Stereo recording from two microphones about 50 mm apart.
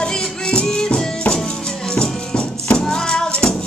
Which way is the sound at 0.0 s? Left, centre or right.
Left.